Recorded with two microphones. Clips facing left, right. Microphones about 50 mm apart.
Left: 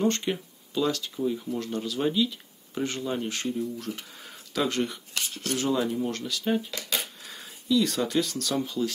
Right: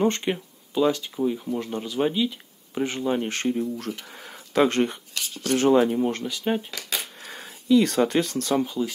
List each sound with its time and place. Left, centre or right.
0.0 s speech: right
3.3 s speech: right
4.1 s a sound: right
5.5 s speech: right
6.0 s speech: right
7.2 s speech: right
8.6 s speech: centre